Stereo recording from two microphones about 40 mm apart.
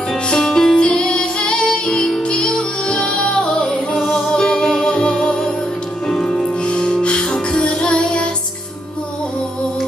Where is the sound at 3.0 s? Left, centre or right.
Left.